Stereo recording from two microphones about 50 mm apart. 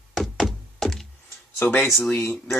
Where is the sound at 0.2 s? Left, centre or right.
Centre.